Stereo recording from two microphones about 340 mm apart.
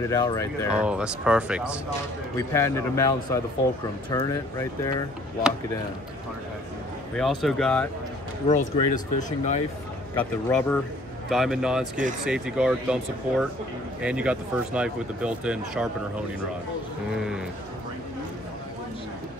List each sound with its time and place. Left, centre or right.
0.1 s speech: centre
0.8 s speech: centre
2.3 s speech: centre
7.2 s speech: centre
8.5 s speech: left
10.1 s speech: centre